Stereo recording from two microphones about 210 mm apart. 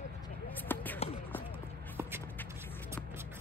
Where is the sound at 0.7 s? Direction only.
10° left (ahead or behind).